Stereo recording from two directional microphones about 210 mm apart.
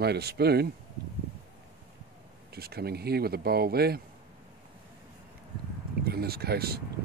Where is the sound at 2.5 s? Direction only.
50° right (ahead or behind).